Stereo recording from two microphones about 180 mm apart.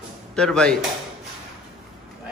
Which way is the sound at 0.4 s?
5° left (ahead or behind).